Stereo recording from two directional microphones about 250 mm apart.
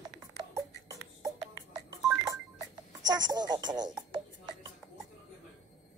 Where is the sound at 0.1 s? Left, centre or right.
Centre.